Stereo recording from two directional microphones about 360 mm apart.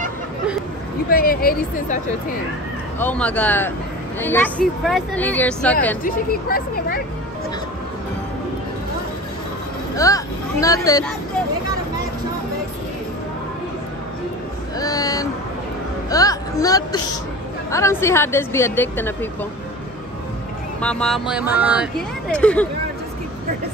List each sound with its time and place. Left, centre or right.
1.1 s speech: left
3.0 s speech: centre
6.0 s speech: left
9.9 s speech: centre
14.8 s a sound: centre
16.1 s a woman's voice: centre
20.8 s speech: centre